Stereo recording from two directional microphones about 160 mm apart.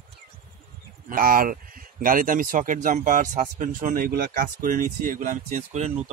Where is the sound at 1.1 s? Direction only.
60° right (ahead or behind).